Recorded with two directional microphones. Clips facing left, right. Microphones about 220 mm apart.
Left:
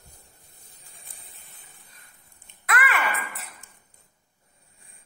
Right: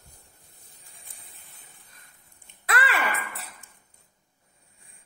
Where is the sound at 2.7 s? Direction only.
30° right (ahead or behind).